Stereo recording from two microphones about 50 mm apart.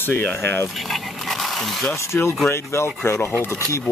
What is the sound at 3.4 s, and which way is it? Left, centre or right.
Speech, left.